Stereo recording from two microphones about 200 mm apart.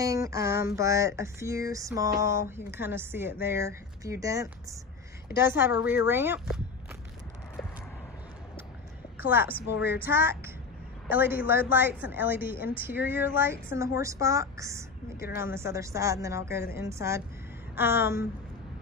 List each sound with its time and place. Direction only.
0.0 s speech: 15° right (ahead or behind)
9.2 s a woman's voice: 10° right (ahead or behind)
9.5 s a woman's voice: 50° left (ahead or behind)
10.0 s speech: 10° right (ahead or behind)